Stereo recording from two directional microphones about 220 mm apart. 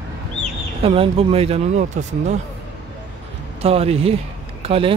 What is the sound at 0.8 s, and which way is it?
Speech, 25° right (ahead or behind).